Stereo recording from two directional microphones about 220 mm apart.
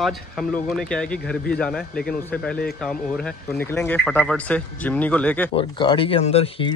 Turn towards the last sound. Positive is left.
turn(degrees=25)  # may be behind; listen again after turning